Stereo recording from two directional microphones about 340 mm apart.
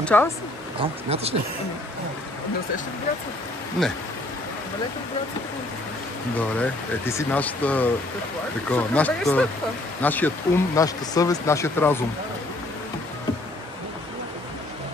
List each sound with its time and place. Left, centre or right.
0.0 s speech: centre
0.7 s speech: centre
6.6 s speech: centre